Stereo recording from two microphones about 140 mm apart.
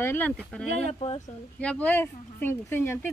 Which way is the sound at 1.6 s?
10° left (ahead or behind).